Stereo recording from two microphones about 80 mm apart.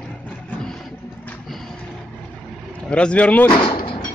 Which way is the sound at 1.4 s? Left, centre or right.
Centre.